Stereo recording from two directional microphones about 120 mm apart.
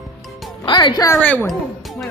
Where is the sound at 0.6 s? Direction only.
40° left (ahead or behind).